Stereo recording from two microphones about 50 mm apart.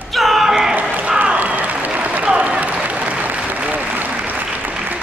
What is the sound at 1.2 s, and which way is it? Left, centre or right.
Applause, right.